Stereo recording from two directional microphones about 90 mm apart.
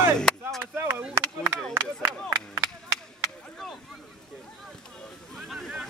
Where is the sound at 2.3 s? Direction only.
35° right (ahead or behind).